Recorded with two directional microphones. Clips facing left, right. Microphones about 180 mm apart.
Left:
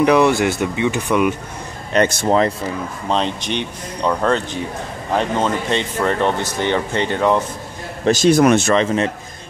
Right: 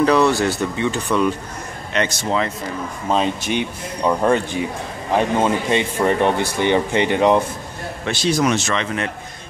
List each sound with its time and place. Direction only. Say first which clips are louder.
0.0 s speech: left 2 dB; 15° left (ahead or behind)
2.0 s speech: left 5 dB; 50° left (ahead or behind)
3.1 s a man's voice: right 1 dB; 5° right (ahead or behind)
8.0 s a man's voice: left 7 dB; 45° left (ahead or behind)
8.7 s a man's voice: left 6 dB; 30° left (ahead or behind)